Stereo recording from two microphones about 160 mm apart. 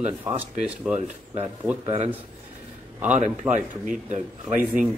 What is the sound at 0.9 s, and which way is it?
Speech, 40° right (ahead or behind).